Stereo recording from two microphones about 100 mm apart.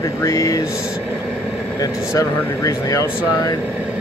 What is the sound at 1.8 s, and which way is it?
Speech, 35° left (ahead or behind).